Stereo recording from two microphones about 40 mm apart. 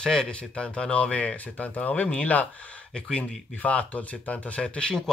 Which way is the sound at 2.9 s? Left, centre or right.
Left.